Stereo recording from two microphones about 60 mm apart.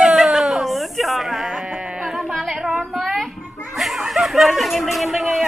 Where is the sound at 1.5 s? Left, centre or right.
Centre.